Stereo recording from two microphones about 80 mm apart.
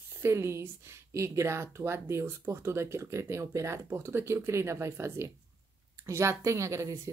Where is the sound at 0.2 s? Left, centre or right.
Right.